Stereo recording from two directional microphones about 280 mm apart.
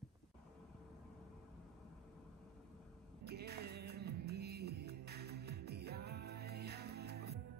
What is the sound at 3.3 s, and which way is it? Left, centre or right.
Music, right.